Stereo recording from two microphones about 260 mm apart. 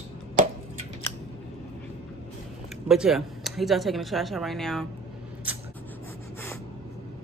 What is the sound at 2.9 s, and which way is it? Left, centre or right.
Speech, centre.